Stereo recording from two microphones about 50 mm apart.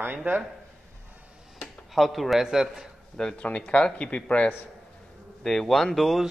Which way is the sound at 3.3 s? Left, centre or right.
Left.